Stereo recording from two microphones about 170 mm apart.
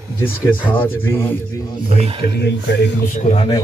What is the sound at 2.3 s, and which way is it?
Speech, 80° left.